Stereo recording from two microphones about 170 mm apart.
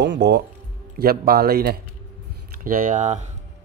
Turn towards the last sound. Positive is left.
turn(degrees=-45)  # may be behind; listen again after turning